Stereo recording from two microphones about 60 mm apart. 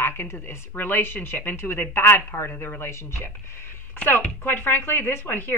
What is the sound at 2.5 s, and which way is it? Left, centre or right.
Speech, left.